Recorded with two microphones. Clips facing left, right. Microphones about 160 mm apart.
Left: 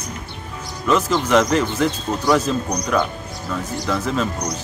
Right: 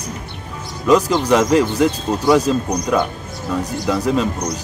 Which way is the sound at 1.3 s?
15° right (ahead or behind).